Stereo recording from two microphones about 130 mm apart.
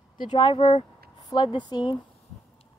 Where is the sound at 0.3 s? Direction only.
35° left (ahead or behind).